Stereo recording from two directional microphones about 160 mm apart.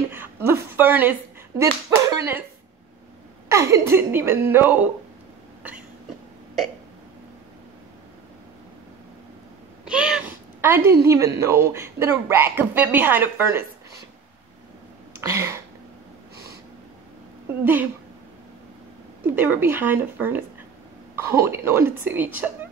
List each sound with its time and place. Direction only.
0.1 s a woman's voice: 15° right (ahead or behind)
3.4 s speech: 20° right (ahead or behind)
9.8 s speech: 5° right (ahead or behind)
15.1 s speech: 15° right (ahead or behind)
19.2 s speech: 10° right (ahead or behind)